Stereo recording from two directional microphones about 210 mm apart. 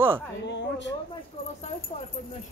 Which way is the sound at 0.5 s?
55° left (ahead or behind).